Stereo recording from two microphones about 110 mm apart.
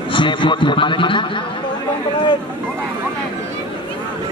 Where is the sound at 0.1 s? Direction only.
45° left (ahead or behind).